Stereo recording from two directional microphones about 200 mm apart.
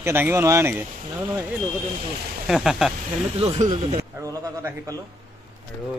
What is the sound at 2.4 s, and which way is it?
Speech, centre (ahead or behind).